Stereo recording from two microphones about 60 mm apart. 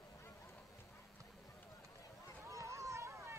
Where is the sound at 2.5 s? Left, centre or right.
Right.